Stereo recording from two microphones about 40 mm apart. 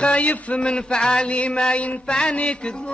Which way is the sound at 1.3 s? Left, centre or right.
Left.